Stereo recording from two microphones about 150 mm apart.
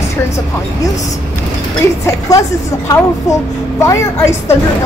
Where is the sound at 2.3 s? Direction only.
20° left (ahead or behind).